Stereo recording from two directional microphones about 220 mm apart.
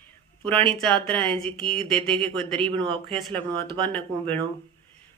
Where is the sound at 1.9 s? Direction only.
5° left (ahead or behind).